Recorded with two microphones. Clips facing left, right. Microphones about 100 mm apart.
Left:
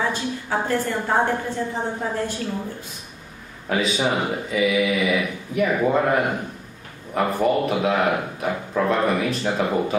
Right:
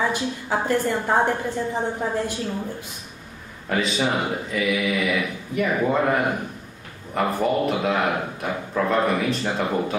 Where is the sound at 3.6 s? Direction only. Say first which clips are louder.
Left 1 dB; 5° left (ahead or behind).